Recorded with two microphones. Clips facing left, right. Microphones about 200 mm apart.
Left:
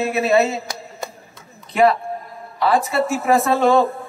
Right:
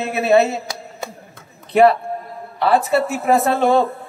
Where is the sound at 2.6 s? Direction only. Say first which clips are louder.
Right 2 dB; 60° right (ahead or behind).